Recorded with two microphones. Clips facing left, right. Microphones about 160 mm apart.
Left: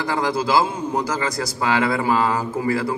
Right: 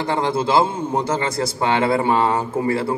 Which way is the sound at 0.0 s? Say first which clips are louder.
Right 2 dB; 25° right (ahead or behind).